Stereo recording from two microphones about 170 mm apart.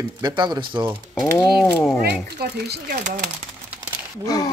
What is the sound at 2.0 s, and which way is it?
Speech, 65° right (ahead or behind).